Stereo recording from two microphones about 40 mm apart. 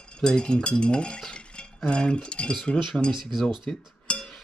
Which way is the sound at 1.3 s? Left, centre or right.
Left.